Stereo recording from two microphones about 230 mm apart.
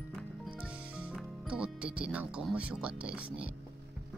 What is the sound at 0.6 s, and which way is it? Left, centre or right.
Speech, centre.